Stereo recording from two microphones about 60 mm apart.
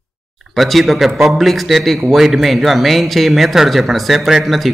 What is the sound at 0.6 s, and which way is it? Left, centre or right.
A man's voice, centre.